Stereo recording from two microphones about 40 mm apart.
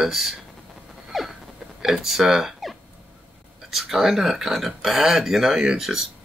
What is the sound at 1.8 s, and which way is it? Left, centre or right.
Speech, centre.